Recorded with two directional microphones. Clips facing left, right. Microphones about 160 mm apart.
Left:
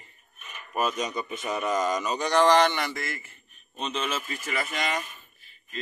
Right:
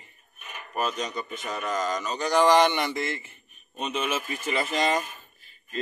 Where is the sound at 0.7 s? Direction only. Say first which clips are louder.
Left 1 dB; 10° left (ahead or behind).